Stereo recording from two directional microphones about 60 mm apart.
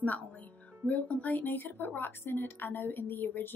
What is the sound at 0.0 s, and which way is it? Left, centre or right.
Speech, left.